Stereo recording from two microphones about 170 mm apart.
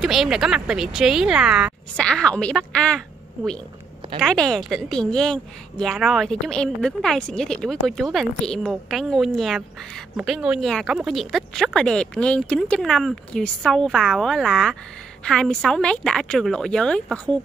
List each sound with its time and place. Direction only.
0.0 s a woman's voice: centre (ahead or behind)
4.2 s a woman's voice: 5° left (ahead or behind)